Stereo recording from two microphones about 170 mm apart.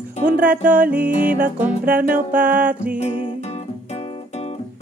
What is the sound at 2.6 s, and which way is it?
Music, 10° right (ahead or behind).